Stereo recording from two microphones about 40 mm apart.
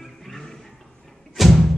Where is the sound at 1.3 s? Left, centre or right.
Centre.